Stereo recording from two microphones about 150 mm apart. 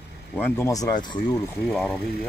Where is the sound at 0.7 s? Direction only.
25° left (ahead or behind).